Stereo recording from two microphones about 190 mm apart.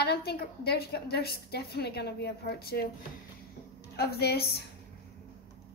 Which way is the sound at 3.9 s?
55° left (ahead or behind).